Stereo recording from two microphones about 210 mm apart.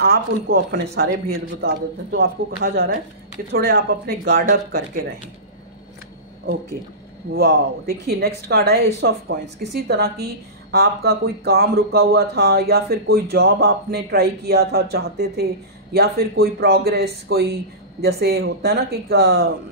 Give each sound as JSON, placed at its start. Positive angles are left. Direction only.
{"t": 0.0, "sound": "a woman's voice", "side_deg": -50}
{"t": 7.3, "sound": "a woman's voice", "side_deg": -50}